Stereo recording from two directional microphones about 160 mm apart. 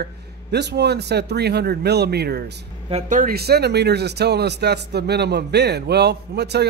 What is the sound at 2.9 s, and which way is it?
Speech, 55° right (ahead or behind).